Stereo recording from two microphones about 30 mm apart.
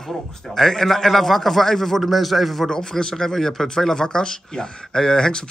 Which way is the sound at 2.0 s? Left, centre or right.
Centre.